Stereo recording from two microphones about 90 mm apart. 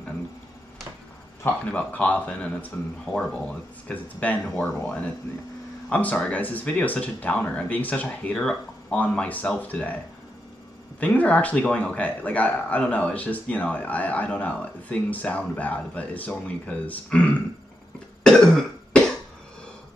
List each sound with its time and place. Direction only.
1.4 s speech: 20° left (ahead or behind)
4.5 s speech: 5° left (ahead or behind)
11.0 s speech: 15° left (ahead or behind)
18.2 s cough: 5° left (ahead or behind)